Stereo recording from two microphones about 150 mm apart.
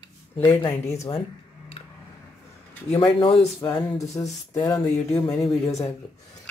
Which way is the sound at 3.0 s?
40° left (ahead or behind).